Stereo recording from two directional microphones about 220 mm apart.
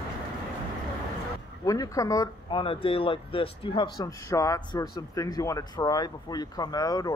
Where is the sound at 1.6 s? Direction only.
15° left (ahead or behind).